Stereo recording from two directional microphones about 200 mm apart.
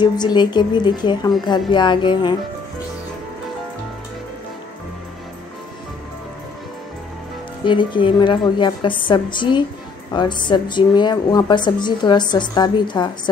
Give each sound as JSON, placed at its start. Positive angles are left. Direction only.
{"t": 0.0, "sound": "a woman's voice", "side_deg": 20}
{"t": 7.6, "sound": "a woman's voice", "side_deg": 25}